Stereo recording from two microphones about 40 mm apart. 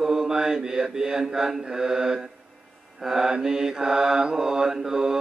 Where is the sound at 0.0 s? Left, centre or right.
Centre.